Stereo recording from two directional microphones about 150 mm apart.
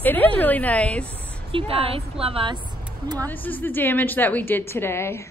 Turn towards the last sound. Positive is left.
turn(degrees=15)  # may be behind; listen again after turning